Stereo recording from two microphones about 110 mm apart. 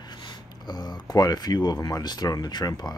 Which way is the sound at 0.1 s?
40° left (ahead or behind).